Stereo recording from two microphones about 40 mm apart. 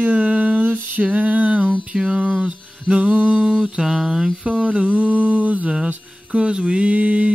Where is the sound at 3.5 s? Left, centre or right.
Right.